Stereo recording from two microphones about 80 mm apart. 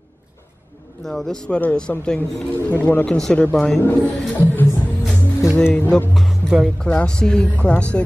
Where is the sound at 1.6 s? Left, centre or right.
Centre.